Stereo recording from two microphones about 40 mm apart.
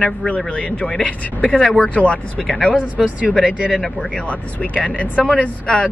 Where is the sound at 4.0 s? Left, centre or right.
Left.